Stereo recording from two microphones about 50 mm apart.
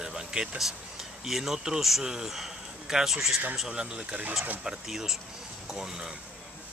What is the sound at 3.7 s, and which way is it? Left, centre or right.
Speech, centre.